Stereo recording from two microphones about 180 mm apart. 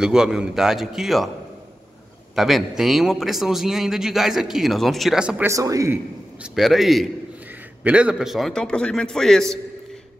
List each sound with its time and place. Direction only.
0.0 s a man's voice: 5° right (ahead or behind)
2.3 s a man's voice: centre (ahead or behind)
5.5 s a man's voice: 20° right (ahead or behind)
6.4 s a man's voice: centre (ahead or behind)